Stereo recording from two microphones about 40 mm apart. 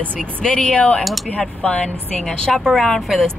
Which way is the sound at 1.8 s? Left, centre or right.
Left.